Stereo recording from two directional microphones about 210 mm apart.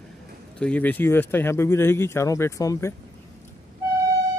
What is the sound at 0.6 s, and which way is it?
Speech, 5° left (ahead or behind).